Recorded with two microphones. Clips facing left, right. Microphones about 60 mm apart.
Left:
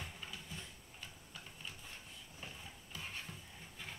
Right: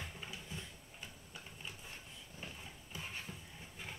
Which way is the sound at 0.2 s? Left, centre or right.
Centre.